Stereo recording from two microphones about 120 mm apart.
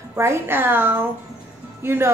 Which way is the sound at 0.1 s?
20° right (ahead or behind).